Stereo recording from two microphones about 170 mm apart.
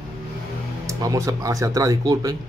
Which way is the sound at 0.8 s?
20° right (ahead or behind).